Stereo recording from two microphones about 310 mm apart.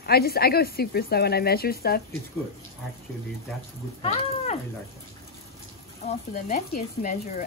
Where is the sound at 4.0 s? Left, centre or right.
Left.